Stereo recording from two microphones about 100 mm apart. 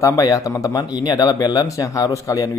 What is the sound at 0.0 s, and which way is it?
Speech, 35° left (ahead or behind).